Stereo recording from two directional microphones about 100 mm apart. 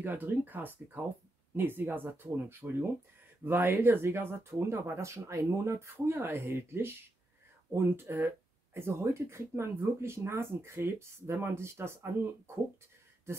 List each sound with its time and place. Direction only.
0.0 s speech: 20° right (ahead or behind)